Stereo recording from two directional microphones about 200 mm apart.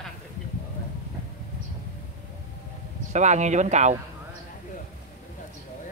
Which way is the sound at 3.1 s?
35° right (ahead or behind).